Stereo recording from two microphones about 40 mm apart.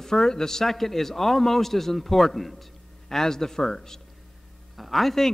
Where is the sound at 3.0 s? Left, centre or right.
Centre.